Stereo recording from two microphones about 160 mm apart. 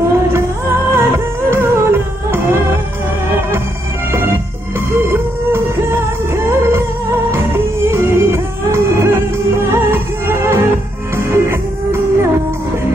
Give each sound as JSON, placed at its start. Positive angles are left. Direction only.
{"t": 0.9, "sound": "music", "side_deg": -15}
{"t": 4.7, "sound": "music", "side_deg": -15}